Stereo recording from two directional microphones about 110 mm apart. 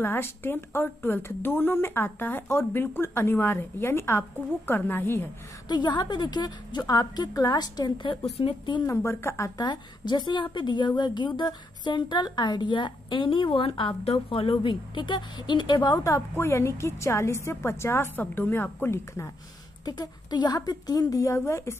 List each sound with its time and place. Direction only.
0.0 s speech: 20° left (ahead or behind)
5.7 s a woman's voice: 45° left (ahead or behind)
8.2 s a woman's voice: 65° left (ahead or behind)
8.8 s speech: 20° left (ahead or behind)
9.6 s a woman's voice: 40° left (ahead or behind)
16.1 s speech: 20° left (ahead or behind)
19.8 s a woman's voice: 35° left (ahead or behind)